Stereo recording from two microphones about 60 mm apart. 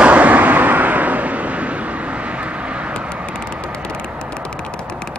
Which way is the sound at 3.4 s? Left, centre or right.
Centre.